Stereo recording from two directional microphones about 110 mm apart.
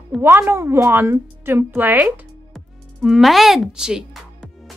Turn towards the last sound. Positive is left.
turn(degrees=-5)  # may be behind; listen again after turning